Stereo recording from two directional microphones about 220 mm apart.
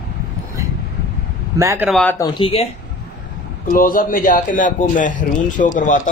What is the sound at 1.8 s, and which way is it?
Speech, centre (ahead or behind).